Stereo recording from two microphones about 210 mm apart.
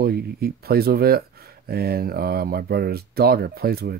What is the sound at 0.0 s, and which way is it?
Speech, 45° right (ahead or behind).